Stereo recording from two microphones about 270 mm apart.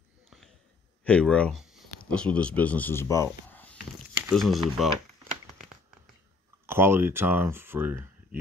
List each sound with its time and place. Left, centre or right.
1.0 s speech: centre
4.2 s crumpling: centre
6.6 s speech: centre